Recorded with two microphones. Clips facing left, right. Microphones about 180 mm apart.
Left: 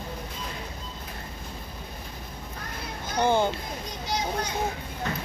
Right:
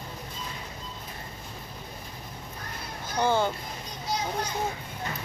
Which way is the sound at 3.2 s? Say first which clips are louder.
Left 2 dB; 20° left (ahead or behind).